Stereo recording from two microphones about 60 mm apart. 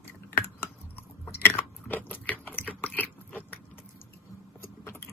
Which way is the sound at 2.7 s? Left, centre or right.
Left.